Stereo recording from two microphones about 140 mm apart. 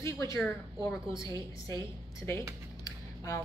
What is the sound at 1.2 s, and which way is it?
A woman's voice, 35° right (ahead or behind).